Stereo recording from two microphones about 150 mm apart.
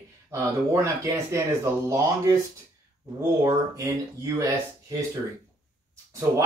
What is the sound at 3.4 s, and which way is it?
Speech, 20° right (ahead or behind).